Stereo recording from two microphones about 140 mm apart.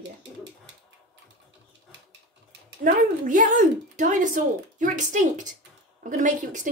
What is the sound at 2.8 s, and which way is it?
Speech, 70° right (ahead or behind).